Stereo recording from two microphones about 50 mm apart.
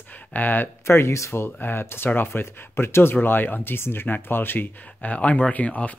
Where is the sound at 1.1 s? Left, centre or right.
Left.